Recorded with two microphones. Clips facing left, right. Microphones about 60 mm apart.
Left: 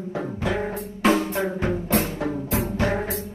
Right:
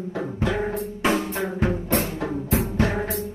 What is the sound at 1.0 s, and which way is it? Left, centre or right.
Music, left.